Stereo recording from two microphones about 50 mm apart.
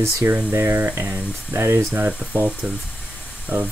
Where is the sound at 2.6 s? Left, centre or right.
Centre.